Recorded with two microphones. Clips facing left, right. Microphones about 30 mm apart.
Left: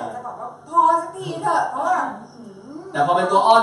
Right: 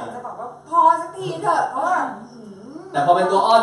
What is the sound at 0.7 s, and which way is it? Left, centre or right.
A man's voice, centre.